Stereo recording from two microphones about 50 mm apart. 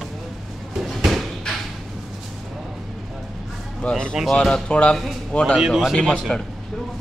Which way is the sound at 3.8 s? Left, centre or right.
Centre.